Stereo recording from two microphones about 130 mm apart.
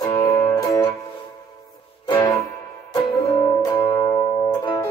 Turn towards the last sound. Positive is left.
turn(degrees=30)  # may be behind; listen again after turning